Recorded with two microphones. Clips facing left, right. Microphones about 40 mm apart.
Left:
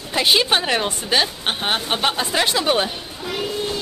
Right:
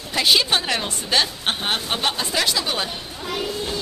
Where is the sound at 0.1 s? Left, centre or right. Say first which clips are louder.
Left 1 dB; centre.